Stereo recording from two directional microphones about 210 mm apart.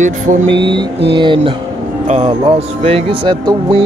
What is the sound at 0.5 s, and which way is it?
Music, 25° right (ahead or behind).